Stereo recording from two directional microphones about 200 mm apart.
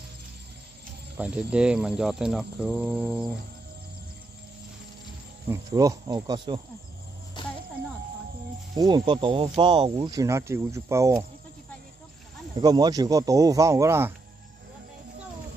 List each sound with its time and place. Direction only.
1.1 s speech: 5° right (ahead or behind)
5.5 s speech: 15° right (ahead or behind)
8.7 s speech: 20° right (ahead or behind)
12.5 s speech: 20° right (ahead or behind)